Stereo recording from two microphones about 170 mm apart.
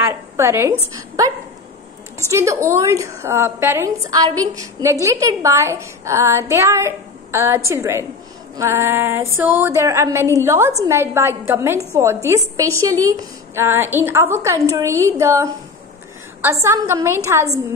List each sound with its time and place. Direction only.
0.0 s a woman's voice: 15° right (ahead or behind)
2.3 s a woman's voice: 15° right (ahead or behind)
16.6 s a woman's voice: 15° right (ahead or behind)